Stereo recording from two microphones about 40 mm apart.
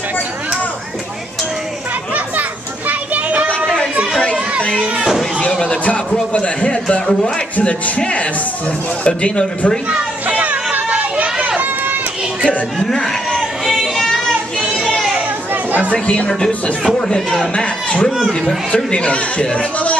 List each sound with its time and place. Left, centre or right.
2.9 s children playing: right
4.2 s children playing: left
6.3 s speech: left
7.1 s speech: centre
8.0 s speech: left
10.2 s a sound: right
11.3 s run: right
12.8 s speech: centre
13.3 s a sound: centre
15.9 s speech: left
16.3 s speech: centre
18.1 s speech: centre
18.9 s speech: left